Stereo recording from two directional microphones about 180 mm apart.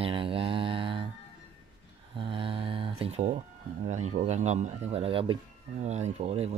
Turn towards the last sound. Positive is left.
turn(degrees=-35)  # may be behind; listen again after turning